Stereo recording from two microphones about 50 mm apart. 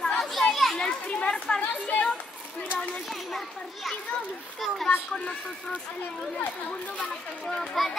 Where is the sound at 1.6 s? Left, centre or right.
Left.